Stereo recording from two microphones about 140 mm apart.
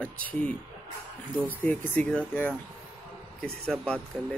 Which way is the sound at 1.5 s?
15° left (ahead or behind).